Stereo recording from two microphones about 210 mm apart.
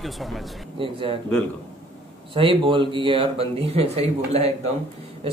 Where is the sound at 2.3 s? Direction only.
25° right (ahead or behind).